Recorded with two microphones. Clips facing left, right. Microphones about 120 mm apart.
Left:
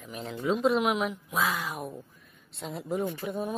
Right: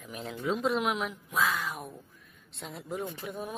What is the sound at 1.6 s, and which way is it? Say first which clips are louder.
Speech: left 2 dB; centre (ahead or behind).